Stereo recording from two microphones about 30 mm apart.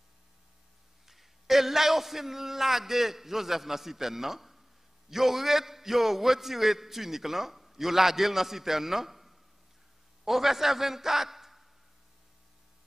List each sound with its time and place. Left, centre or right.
1.0 s a man's voice: centre